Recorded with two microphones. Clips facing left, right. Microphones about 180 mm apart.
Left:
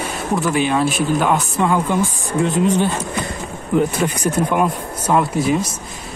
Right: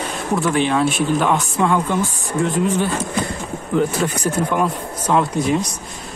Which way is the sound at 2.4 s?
20° left (ahead or behind).